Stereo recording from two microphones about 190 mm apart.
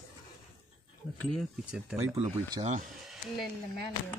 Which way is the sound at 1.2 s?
5° left (ahead or behind).